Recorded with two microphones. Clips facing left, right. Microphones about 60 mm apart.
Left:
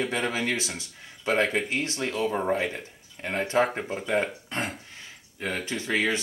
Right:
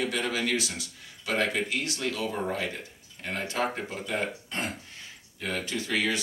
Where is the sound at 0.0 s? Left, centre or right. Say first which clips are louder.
Left 2 dB; left.